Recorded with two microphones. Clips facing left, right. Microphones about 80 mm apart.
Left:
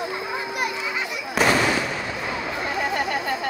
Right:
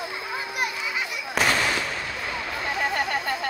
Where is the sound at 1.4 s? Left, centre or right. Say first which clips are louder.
Left 4 dB; centre.